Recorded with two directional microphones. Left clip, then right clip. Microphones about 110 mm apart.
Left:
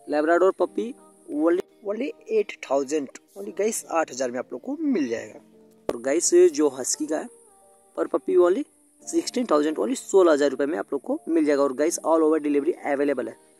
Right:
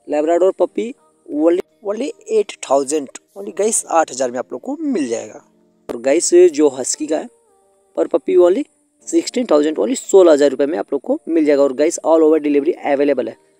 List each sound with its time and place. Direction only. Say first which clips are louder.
0.0 s a man's voice: right 6 dB; 10° right (ahead or behind)
1.9 s speech: right 7 dB; 45° right (ahead or behind)